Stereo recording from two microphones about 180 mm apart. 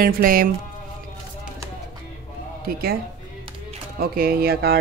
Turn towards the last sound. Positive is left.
turn(degrees=-60)  # may be behind; listen again after turning